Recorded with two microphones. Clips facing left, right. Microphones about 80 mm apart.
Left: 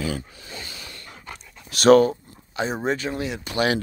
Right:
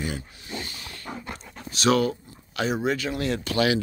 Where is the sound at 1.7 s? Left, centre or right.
Left.